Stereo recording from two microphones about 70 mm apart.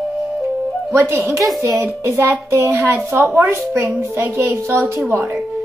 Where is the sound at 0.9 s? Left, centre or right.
Right.